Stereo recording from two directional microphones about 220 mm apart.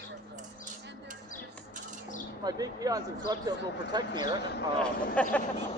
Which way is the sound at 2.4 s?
15° right (ahead or behind).